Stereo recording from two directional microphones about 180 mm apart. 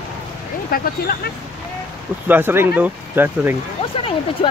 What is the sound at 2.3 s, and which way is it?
Speech, 10° right (ahead or behind).